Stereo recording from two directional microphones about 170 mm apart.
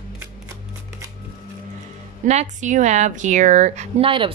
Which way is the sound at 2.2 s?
45° right (ahead or behind).